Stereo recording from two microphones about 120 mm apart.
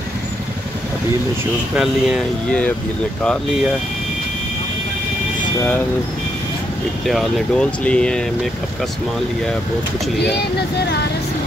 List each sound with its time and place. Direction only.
1.8 s speech: 5° right (ahead or behind)
7.1 s speech: centre (ahead or behind)